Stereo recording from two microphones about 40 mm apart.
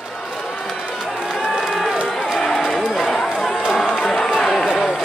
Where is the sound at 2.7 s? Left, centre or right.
Centre.